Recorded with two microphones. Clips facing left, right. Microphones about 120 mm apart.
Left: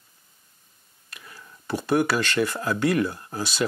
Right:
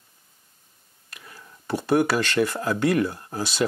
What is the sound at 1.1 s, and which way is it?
Whispering, 35° right (ahead or behind).